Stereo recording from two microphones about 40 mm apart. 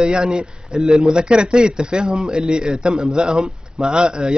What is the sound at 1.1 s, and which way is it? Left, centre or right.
Speech, right.